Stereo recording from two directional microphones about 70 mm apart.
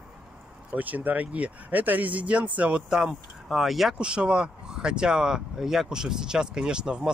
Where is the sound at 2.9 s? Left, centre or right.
Centre.